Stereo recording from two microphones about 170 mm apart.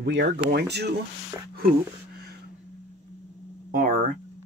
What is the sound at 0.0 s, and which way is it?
Speech, 90° right.